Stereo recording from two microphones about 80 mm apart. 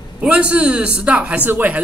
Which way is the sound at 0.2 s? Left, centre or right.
Centre.